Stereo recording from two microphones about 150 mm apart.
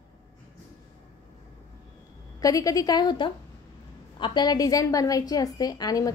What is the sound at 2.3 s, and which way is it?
A woman's voice, 25° left (ahead or behind).